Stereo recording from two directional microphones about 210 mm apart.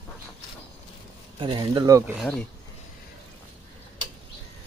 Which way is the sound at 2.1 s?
Centre (ahead or behind).